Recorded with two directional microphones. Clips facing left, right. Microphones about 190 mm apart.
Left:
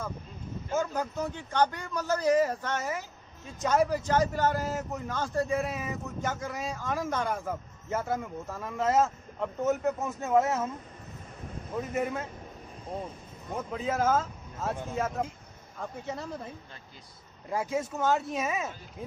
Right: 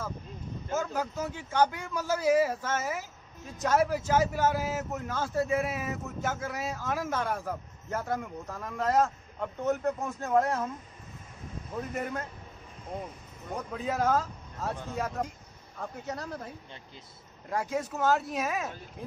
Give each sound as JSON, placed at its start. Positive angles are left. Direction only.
{"t": 0.7, "sound": "a man's voice", "side_deg": -5}
{"t": 11.9, "sound": "a man's voice", "side_deg": 5}
{"t": 13.6, "sound": "a man's voice", "side_deg": 0}
{"t": 17.5, "sound": "a man's voice", "side_deg": 0}